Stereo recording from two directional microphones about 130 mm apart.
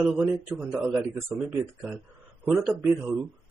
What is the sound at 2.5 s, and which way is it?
Speech, 10° right (ahead or behind).